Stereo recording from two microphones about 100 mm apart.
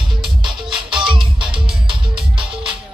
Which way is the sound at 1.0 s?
55° right (ahead or behind).